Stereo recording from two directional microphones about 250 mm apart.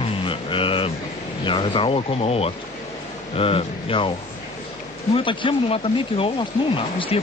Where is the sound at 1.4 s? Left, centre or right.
Centre.